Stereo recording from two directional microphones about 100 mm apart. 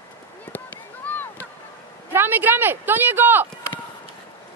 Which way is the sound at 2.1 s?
20° right (ahead or behind).